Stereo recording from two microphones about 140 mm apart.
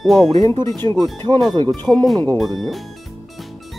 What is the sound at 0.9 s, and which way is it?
Speech, 30° right (ahead or behind).